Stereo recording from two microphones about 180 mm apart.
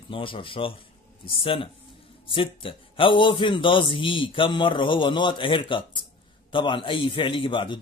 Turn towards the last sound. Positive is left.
turn(degrees=25)  # may be behind; listen again after turning